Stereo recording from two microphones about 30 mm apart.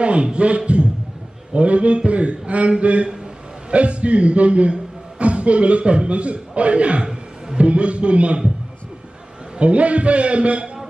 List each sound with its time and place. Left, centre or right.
0.0 s a man's voice: right
9.6 s a man's voice: right